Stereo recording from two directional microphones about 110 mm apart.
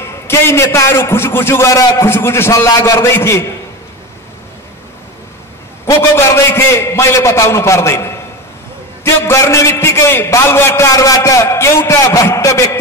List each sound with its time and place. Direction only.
0.0 s a man's voice: 25° left (ahead or behind)
5.9 s a man's voice: 25° left (ahead or behind)